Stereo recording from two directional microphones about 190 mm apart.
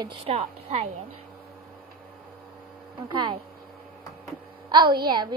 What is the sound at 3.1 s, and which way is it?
Speech, 25° right (ahead or behind).